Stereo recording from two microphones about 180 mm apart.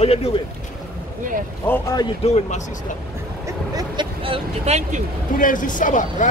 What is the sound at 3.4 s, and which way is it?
Speech, 25° right (ahead or behind).